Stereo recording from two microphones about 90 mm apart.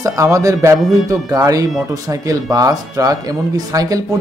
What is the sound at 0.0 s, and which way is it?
Speech, 35° right (ahead or behind).